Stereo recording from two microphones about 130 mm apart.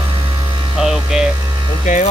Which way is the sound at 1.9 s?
70° left (ahead or behind).